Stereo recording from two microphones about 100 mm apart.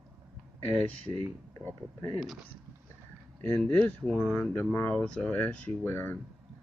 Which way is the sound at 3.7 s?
15° left (ahead or behind).